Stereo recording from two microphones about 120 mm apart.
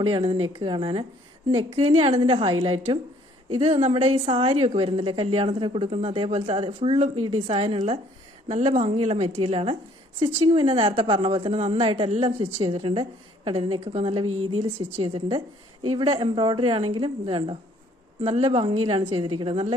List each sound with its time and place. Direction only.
0.0 s a woman's voice: 45° right (ahead or behind)
1.5 s a woman's voice: 55° right (ahead or behind)
8.5 s a woman's voice: 70° right (ahead or behind); by 17.6 s 45° right (ahead or behind)
18.2 s a woman's voice: 60° right (ahead or behind)